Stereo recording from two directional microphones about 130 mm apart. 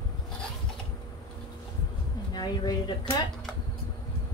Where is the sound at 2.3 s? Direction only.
35° left (ahead or behind).